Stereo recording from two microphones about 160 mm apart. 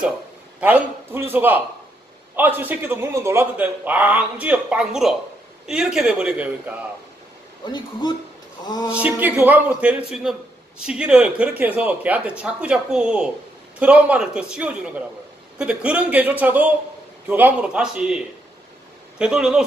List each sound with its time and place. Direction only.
0.6 s a man's voice: 10° right (ahead or behind)
7.6 s speech: 25° left (ahead or behind)
9.0 s a man's voice: 10° right (ahead or behind)